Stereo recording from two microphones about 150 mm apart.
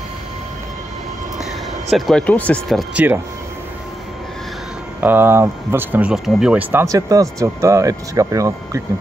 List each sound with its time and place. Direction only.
1.4 s speech: centre (ahead or behind)
2.9 s speech: 10° right (ahead or behind)
5.0 s speech: 15° right (ahead or behind)
6.8 s speech: 20° right (ahead or behind)